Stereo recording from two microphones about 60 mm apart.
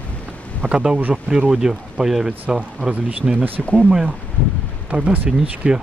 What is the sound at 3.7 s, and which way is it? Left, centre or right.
Speech, centre.